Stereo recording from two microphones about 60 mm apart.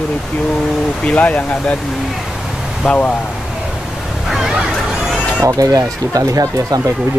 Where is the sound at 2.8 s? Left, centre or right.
Left.